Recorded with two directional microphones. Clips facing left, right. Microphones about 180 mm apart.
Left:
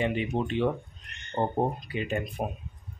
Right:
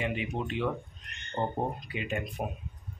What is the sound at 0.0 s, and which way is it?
Speech, 30° left (ahead or behind).